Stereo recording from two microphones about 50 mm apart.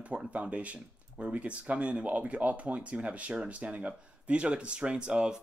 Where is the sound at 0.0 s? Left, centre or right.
Right.